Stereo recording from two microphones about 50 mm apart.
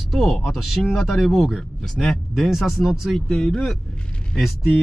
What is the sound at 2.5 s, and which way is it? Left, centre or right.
Speech, centre.